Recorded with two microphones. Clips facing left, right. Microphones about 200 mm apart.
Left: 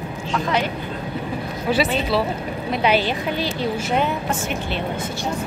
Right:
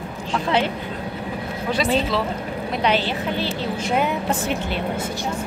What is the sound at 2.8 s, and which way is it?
Speech, 10° left (ahead or behind).